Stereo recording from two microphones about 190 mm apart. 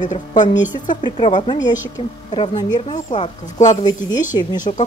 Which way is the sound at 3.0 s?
40° left (ahead or behind).